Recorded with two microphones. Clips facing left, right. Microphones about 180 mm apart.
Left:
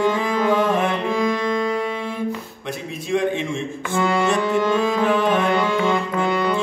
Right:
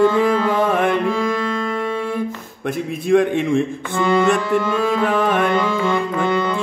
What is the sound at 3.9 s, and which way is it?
Music, 5° left (ahead or behind).